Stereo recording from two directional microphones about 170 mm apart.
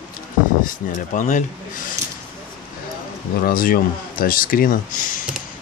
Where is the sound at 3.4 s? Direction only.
60° left (ahead or behind).